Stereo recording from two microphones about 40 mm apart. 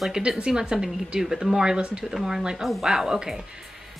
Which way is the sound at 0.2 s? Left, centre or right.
Centre.